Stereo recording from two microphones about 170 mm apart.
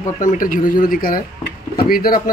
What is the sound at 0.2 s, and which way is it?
Speech, 50° left (ahead or behind).